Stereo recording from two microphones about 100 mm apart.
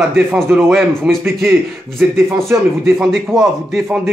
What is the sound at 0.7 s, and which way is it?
Speech, centre (ahead or behind).